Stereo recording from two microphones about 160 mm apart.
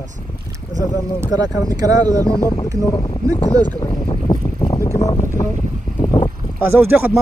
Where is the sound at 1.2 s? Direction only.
20° right (ahead or behind).